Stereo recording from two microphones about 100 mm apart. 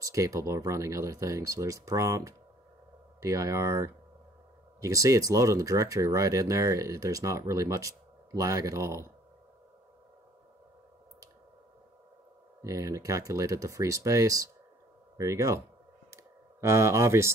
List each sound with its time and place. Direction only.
0.0 s speech: 30° right (ahead or behind)
12.6 s speech: 30° right (ahead or behind)
16.6 s speech: 30° right (ahead or behind)